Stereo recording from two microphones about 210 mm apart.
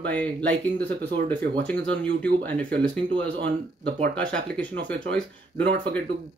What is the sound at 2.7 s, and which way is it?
Speech, 55° right (ahead or behind).